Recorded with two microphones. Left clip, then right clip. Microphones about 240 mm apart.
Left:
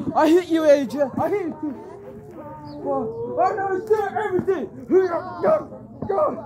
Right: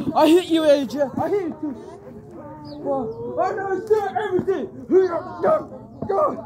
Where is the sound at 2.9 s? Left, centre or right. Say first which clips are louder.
Even; centre.